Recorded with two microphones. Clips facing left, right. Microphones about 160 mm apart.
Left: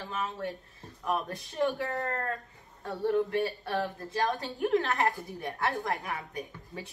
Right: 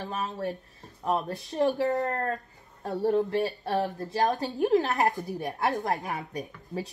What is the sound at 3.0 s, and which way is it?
Speech, 35° right (ahead or behind).